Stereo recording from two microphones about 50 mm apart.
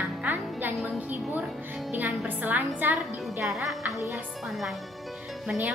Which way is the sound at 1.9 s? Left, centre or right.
Right.